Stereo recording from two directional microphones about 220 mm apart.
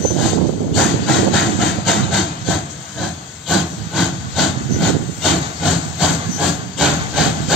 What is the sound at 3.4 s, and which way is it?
Hiss, centre (ahead or behind).